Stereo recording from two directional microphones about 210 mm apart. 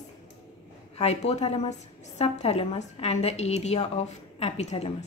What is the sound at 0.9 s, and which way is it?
A woman's voice, 30° left (ahead or behind).